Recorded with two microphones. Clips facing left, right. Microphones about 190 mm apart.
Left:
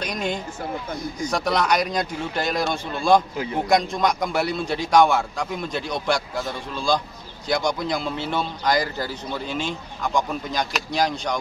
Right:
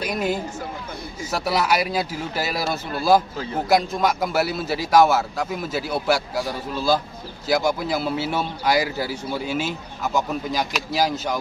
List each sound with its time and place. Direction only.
0.0 s speech: 5° right (ahead or behind)